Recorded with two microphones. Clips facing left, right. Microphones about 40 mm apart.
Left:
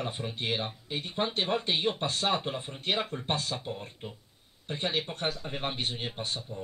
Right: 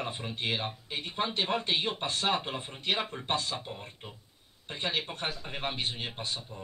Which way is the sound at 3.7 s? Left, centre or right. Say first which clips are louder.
Left 4 dB; centre.